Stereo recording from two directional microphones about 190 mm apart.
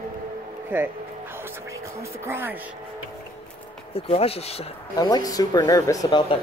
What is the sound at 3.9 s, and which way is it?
Speech, 30° left (ahead or behind).